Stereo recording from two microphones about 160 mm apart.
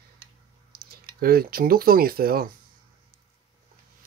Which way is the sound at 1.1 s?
70° right (ahead or behind).